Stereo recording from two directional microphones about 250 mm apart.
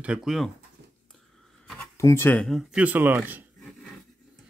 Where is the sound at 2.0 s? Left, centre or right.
Centre.